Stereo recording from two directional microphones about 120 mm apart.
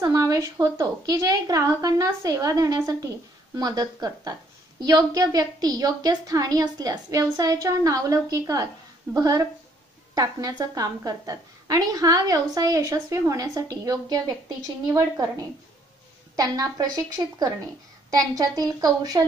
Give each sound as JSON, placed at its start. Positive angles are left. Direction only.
{"t": 0.0, "sound": "a woman's voice", "side_deg": -30}
{"t": 16.3, "sound": "a woman's voice", "side_deg": -30}